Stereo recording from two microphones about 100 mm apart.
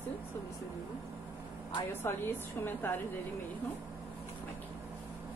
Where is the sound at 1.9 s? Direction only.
20° left (ahead or behind).